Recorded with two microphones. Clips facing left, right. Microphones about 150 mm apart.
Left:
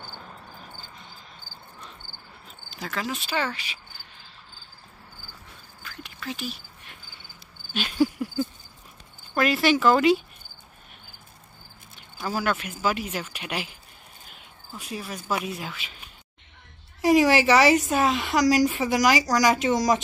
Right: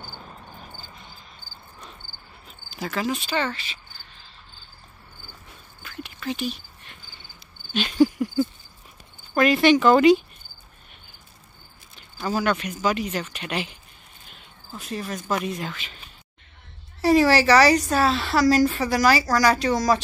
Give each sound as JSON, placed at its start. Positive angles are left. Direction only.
{"t": 2.7, "sound": "speech", "side_deg": -5}
{"t": 5.8, "sound": "whispering", "side_deg": 0}
{"t": 7.7, "sound": "cricket", "side_deg": 5}
{"t": 9.3, "sound": "speech", "side_deg": 0}
{"t": 11.9, "sound": "a woman's voice", "side_deg": 5}
{"t": 14.8, "sound": "a woman's voice", "side_deg": 10}